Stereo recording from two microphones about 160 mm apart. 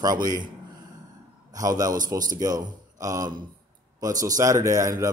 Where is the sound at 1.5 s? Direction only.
20° right (ahead or behind).